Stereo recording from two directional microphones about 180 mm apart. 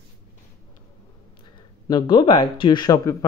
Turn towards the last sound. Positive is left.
turn(degrees=20)  # may be behind; listen again after turning